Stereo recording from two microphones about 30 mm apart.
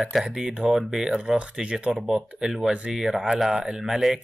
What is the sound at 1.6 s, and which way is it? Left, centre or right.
Speech, right.